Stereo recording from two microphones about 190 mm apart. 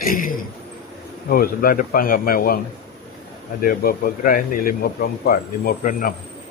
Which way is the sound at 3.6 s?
50° left (ahead or behind).